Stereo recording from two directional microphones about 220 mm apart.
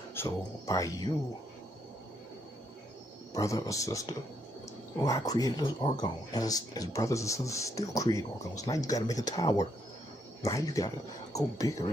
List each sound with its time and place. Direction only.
0.1 s speech: 10° left (ahead or behind)
3.3 s speech: 15° left (ahead or behind)